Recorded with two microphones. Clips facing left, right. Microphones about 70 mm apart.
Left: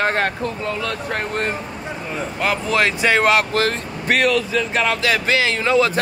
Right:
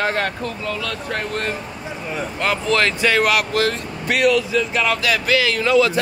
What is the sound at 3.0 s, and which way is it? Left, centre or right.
Speech, left.